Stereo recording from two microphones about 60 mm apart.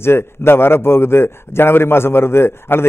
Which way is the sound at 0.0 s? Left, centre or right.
Left.